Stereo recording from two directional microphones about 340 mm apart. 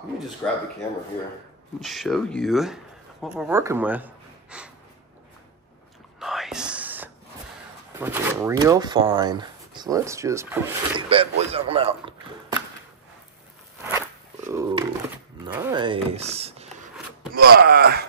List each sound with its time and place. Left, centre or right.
0.4 s speech: centre
1.8 s speech: centre
6.1 s whispering: centre
8.0 s speech: centre
13.9 s a sound: centre
15.4 s speech: centre; by 18.0 s right